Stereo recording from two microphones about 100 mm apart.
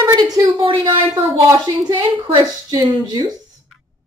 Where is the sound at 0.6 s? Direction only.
50° right (ahead or behind).